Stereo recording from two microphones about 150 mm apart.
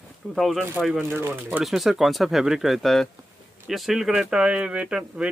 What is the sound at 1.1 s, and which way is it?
Speech, 15° right (ahead or behind).